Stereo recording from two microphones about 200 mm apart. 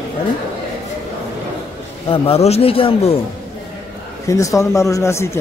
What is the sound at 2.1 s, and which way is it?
A man's voice, 30° left (ahead or behind).